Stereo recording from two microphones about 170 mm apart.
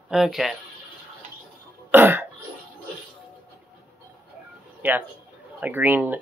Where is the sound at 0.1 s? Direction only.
Centre (ahead or behind).